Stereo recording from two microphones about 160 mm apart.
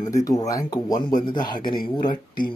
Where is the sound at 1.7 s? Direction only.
30° left (ahead or behind).